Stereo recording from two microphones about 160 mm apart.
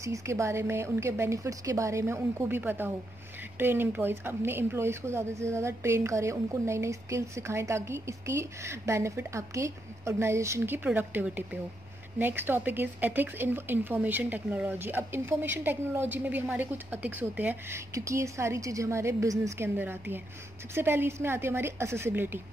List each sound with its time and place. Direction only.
0.0 s a woman's voice: 20° right (ahead or behind)